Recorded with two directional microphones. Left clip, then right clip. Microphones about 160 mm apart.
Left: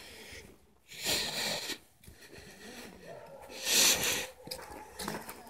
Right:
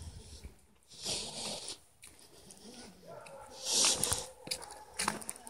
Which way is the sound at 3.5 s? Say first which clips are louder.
Left 4 dB; 40° right (ahead or behind).